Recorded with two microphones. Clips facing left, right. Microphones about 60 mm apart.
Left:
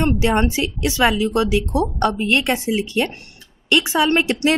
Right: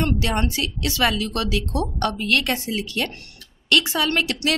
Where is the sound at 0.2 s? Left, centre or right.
Left.